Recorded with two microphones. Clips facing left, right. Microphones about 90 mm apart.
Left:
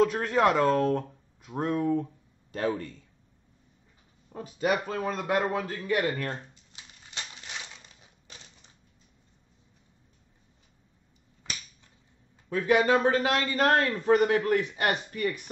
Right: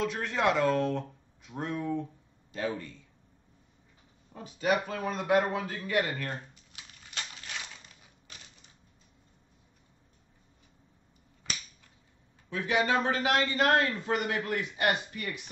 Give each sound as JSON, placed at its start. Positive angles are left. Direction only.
{"t": 0.0, "sound": "speech", "side_deg": 40}
{"t": 4.3, "sound": "a man's voice", "side_deg": 40}
{"t": 6.3, "sound": "a sound", "side_deg": 25}
{"t": 12.4, "sound": "a man's voice", "side_deg": 40}